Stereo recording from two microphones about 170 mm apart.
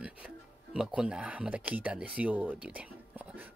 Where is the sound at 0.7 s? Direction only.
5° right (ahead or behind).